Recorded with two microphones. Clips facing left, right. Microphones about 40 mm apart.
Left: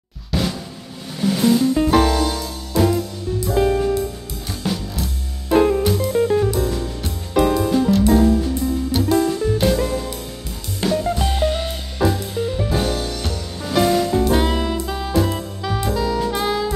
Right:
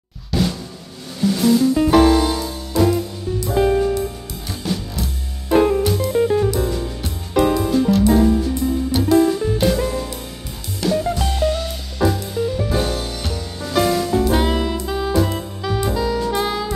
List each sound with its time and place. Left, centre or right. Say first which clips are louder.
0.3 s drum: right 2 dB; centre
1.2 s music: right 1 dB; centre
1.8 s music: right 3 dB; centre
2.8 s music: right 1 dB; centre
10.9 s music: right 1 dB; centre
11.3 s music: even; left
12.0 s music: right 1 dB; centre
14.2 s saxophone: even; centre